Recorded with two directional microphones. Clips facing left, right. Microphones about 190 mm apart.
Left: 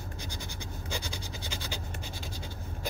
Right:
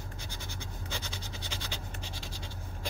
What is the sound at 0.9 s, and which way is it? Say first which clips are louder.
Scratch: left 4 dB; 10° left (ahead or behind).